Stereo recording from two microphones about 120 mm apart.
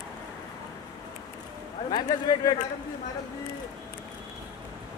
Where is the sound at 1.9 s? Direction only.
35° left (ahead or behind).